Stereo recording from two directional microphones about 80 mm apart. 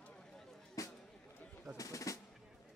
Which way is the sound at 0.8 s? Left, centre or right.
Left.